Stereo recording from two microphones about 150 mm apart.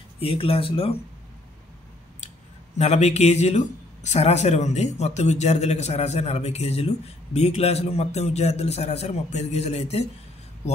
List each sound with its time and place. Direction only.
0.2 s speech: 40° left (ahead or behind)
2.8 s a man's voice: 45° left (ahead or behind)